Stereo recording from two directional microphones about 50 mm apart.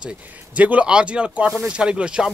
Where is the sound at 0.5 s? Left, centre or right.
Right.